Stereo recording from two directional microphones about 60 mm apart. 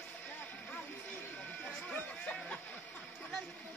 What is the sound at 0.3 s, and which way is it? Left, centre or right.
Music, left.